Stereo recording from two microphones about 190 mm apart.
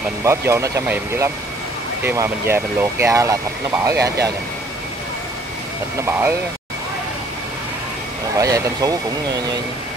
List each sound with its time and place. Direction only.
0.2 s speech: 15° right (ahead or behind)
6.0 s speech: 10° right (ahead or behind)
8.4 s speech: 15° right (ahead or behind)